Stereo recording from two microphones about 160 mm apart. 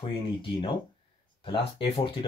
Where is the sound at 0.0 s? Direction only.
30° left (ahead or behind).